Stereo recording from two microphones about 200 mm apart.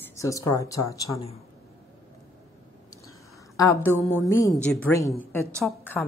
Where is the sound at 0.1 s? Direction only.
15° left (ahead or behind).